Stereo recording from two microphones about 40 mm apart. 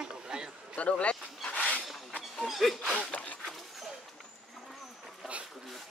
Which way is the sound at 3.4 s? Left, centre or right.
Centre.